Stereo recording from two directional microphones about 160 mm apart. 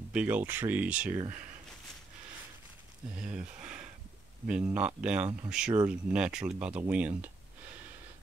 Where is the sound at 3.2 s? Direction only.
5° right (ahead or behind).